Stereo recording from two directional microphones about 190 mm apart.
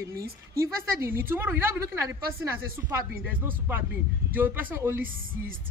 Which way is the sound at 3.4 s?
10° right (ahead or behind).